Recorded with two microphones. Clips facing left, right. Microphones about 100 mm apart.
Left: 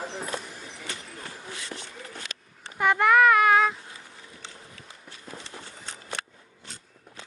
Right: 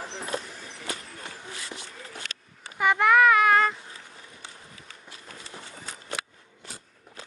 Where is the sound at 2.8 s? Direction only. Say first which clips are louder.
Even; centre (ahead or behind).